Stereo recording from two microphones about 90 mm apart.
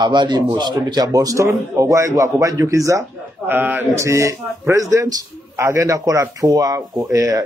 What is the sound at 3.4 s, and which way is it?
Speech, 20° right (ahead or behind).